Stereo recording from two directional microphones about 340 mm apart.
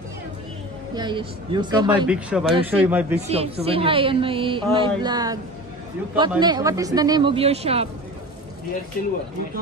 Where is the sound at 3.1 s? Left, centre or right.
Centre.